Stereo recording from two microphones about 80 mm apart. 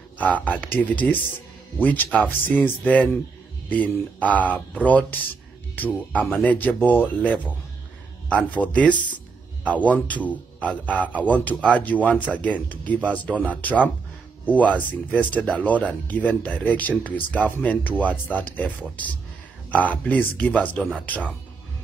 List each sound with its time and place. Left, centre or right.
0.2 s speech: centre